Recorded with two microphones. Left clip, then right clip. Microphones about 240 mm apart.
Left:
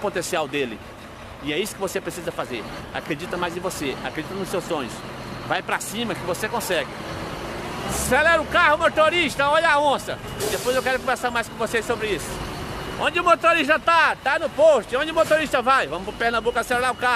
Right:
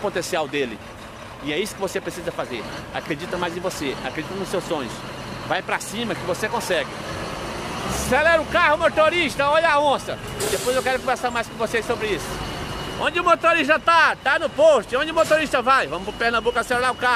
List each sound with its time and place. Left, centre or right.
0.1 s speech: centre
7.8 s vehicle: right
8.1 s speech: centre